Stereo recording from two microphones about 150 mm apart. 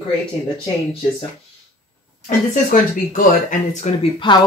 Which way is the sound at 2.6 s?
65° left (ahead or behind).